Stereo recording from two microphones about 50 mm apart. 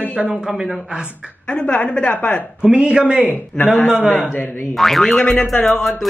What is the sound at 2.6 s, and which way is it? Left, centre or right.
Speech, centre.